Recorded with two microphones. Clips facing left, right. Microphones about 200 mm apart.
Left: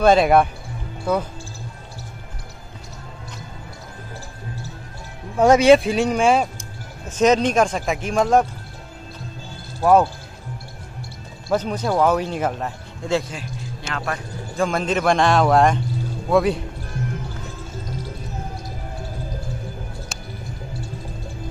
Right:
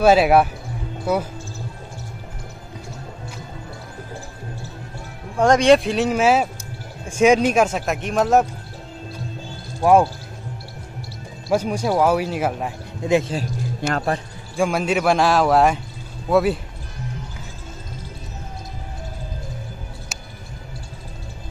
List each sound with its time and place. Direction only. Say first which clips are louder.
0.0 s speech: even; 5° right (ahead or behind)
5.4 s speech: left 1 dB; 5° left (ahead or behind)
9.8 s speech: right 1 dB; 10° right (ahead or behind)
11.4 s speech: right 1 dB; 10° right (ahead or behind)
13.0 s speech: right 4 dB; 20° right (ahead or behind)
13.9 s speech: right 3 dB; 30° right (ahead or behind)
14.6 s speech: right 1 dB; 10° right (ahead or behind)